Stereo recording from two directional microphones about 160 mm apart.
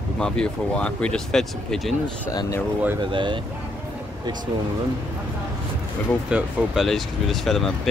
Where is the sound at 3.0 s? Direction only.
30° right (ahead or behind).